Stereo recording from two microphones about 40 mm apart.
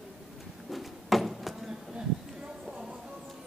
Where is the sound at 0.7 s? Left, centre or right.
Centre.